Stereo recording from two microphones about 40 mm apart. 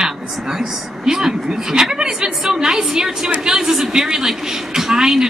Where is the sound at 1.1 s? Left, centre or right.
Centre.